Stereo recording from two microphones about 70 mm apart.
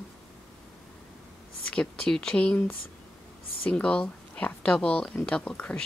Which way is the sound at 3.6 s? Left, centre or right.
Centre.